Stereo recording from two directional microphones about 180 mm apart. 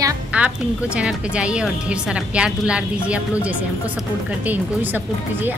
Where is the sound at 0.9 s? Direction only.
5° right (ahead or behind).